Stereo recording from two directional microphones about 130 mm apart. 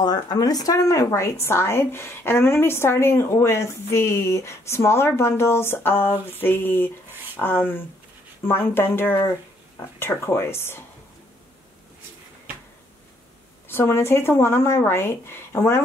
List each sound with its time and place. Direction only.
0.0 s speech: 30° left (ahead or behind)
13.7 s speech: 20° left (ahead or behind)